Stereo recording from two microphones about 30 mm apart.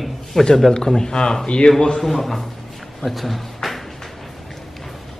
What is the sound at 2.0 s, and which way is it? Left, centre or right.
A man's voice, centre.